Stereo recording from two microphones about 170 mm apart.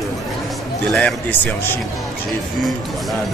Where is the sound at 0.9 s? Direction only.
5° left (ahead or behind).